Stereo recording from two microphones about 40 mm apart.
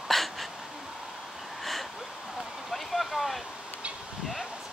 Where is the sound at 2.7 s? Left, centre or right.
Centre.